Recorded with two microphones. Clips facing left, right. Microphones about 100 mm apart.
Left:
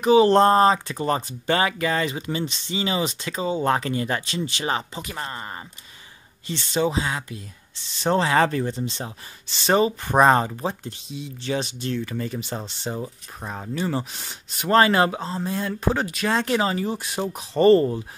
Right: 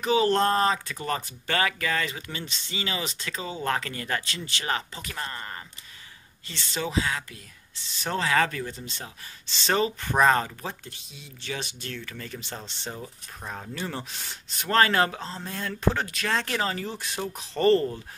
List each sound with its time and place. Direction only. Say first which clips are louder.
0.0 s speech: left 7 dB; 20° left (ahead or behind)
12.9 s speech: left 8 dB; 20° left (ahead or behind)